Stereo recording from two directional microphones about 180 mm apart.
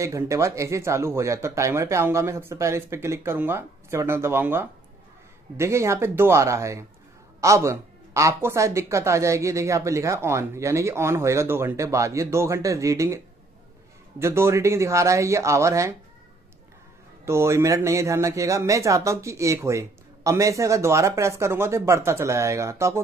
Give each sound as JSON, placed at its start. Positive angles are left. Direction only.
{"t": 0.0, "sound": "a man's voice", "side_deg": -15}
{"t": 14.2, "sound": "a man's voice", "side_deg": -15}
{"t": 17.2, "sound": "a man's voice", "side_deg": -15}